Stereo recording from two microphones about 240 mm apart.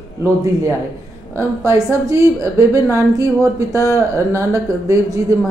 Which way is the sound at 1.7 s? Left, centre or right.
Centre.